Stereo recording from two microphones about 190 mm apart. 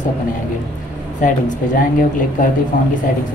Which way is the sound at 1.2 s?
40° left (ahead or behind).